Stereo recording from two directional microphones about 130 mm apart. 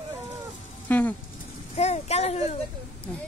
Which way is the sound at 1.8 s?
55° left (ahead or behind).